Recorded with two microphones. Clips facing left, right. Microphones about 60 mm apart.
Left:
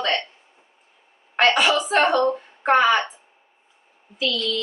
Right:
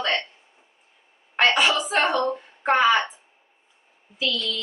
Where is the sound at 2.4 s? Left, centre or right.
Centre.